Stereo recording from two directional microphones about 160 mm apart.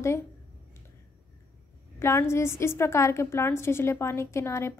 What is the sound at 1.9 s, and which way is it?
A woman's voice, 15° left (ahead or behind).